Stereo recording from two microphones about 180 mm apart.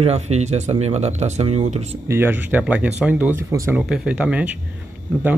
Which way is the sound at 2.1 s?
10° right (ahead or behind).